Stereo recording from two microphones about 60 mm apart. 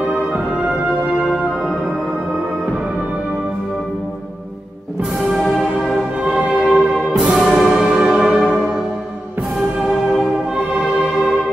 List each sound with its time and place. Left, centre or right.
6.7 s music: centre
7.3 s music: centre